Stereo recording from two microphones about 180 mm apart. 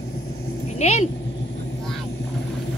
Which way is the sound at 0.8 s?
40° left (ahead or behind).